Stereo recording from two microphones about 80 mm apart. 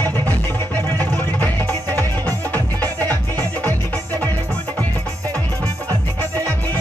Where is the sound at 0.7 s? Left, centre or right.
Left.